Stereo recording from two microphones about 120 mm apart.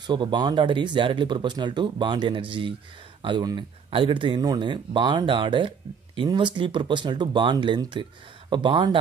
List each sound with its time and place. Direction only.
0.0 s speech: 40° right (ahead or behind)